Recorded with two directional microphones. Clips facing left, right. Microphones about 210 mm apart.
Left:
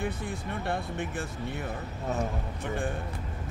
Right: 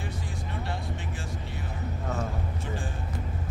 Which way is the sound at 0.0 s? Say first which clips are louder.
Left 4 dB; 55° left (ahead or behind).